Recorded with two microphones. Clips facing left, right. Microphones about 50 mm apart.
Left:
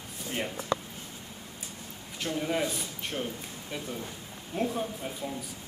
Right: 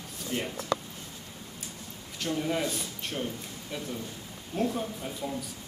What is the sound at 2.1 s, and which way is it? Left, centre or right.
Speech, centre.